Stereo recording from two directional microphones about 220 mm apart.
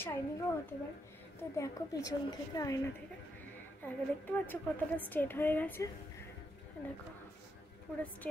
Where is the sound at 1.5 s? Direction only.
15° left (ahead or behind).